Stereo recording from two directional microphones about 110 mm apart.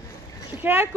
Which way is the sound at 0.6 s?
20° right (ahead or behind).